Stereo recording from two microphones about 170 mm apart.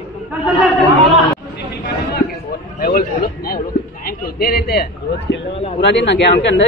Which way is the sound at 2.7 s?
60° left (ahead or behind).